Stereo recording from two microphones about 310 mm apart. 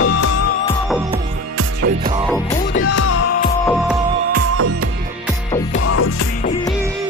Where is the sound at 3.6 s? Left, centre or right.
Centre.